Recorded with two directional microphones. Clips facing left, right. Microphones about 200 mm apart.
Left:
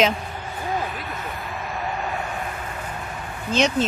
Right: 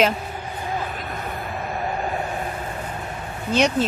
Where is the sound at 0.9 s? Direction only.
40° right (ahead or behind).